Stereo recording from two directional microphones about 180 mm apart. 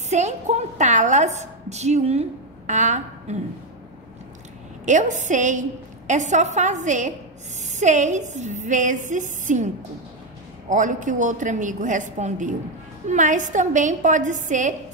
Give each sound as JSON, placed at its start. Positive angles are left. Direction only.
{"t": 0.1, "sound": "a woman's voice", "side_deg": -40}
{"t": 4.8, "sound": "a woman's voice", "side_deg": -45}
{"t": 10.7, "sound": "a woman's voice", "side_deg": -45}